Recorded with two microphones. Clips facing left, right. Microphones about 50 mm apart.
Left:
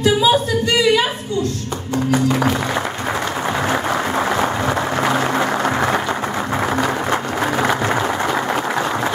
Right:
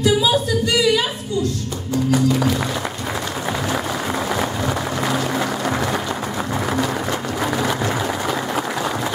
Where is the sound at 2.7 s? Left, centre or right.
Left.